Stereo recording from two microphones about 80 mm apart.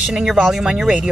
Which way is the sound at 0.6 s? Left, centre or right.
Centre.